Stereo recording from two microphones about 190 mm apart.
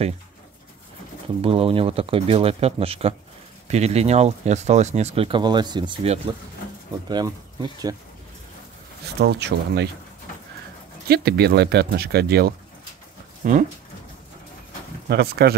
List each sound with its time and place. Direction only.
1.4 s speech: 30° right (ahead or behind)
9.0 s speech: 60° right (ahead or behind)
11.1 s speech: 55° right (ahead or behind)
13.4 s speech: 45° right (ahead or behind)
15.0 s speech: 55° right (ahead or behind)